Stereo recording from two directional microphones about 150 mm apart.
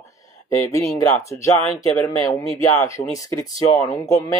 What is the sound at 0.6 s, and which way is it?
Speech, 20° left (ahead or behind).